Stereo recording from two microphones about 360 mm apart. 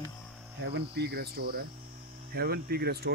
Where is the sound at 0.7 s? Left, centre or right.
Right.